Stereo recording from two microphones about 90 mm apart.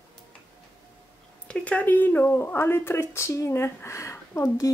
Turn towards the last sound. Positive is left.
turn(degrees=40)  # may be behind; listen again after turning